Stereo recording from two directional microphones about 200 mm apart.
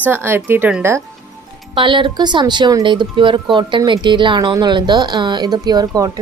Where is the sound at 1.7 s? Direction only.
25° right (ahead or behind).